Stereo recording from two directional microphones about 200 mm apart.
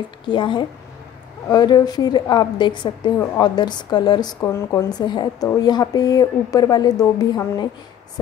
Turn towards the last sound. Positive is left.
turn(degrees=20)  # may be behind; listen again after turning